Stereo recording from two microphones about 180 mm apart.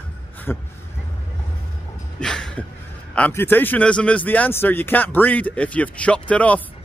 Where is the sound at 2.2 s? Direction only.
5° left (ahead or behind).